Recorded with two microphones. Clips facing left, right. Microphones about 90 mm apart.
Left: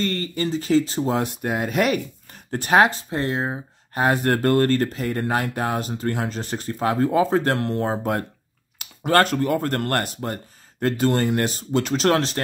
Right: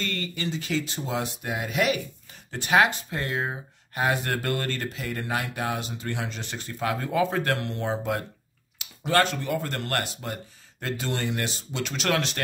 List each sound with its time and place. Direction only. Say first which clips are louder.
0.0 s speech: left 7 dB; 40° left (ahead or behind)
3.9 s speech: left 6 dB; 40° left (ahead or behind)